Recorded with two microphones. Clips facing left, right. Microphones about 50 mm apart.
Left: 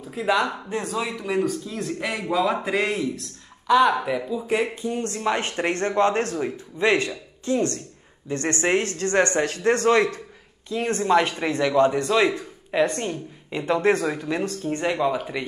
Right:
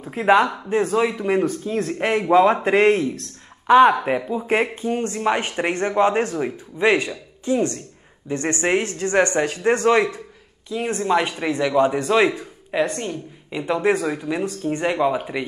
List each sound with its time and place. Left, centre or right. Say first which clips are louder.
0.0 s a man's voice: right 6 dB; right; by 12.4 s centre
12.9 s a woman's voice: even; centre
13.6 s a man's voice: right 1 dB; centre
14.7 s a man's voice: right 3 dB; centre